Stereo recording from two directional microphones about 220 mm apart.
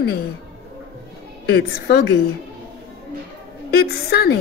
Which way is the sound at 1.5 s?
50° left (ahead or behind).